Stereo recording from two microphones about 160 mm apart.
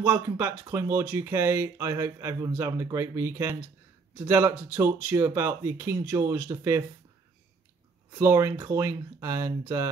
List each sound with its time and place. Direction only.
0.0 s speech: 15° right (ahead or behind)
8.2 s speech: 15° right (ahead or behind)